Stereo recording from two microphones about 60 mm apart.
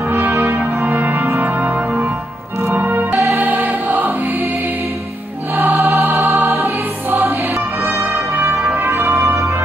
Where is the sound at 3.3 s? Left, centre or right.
Right.